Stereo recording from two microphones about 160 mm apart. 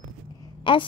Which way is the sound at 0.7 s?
30° left (ahead or behind).